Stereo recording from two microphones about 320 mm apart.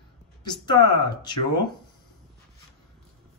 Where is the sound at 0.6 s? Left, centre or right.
Centre.